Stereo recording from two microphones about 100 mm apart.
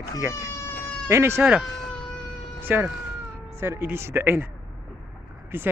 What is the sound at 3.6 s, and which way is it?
Speech, 25° right (ahead or behind).